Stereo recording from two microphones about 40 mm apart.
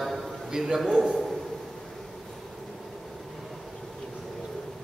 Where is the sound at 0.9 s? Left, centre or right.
Centre.